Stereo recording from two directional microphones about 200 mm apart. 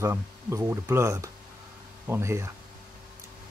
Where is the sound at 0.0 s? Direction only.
15° right (ahead or behind).